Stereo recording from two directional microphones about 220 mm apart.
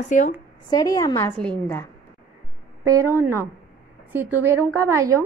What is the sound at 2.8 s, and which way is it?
A woman's voice, 15° right (ahead or behind).